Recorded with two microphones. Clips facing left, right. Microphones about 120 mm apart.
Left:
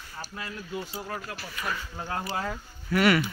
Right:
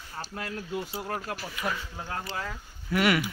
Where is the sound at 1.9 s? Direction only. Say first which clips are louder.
Left 3 dB; 5° left (ahead or behind).